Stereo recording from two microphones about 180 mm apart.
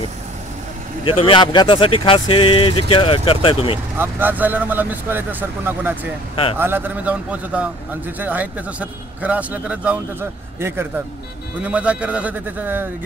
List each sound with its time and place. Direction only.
1.0 s speech: 30° left (ahead or behind)
4.0 s a man's voice: 10° right (ahead or behind)
11.6 s a man's voice: 5° right (ahead or behind)